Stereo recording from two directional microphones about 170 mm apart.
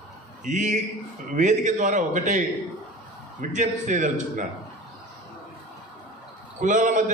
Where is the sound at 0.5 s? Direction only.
45° right (ahead or behind).